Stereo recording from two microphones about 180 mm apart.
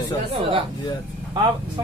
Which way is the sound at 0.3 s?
30° right (ahead or behind).